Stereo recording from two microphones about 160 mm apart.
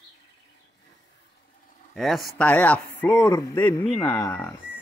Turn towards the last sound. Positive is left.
turn(degrees=15)  # may be behind; listen again after turning